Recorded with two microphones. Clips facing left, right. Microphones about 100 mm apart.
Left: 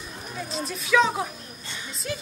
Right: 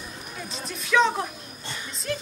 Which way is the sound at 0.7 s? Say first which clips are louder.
Even; centre (ahead or behind).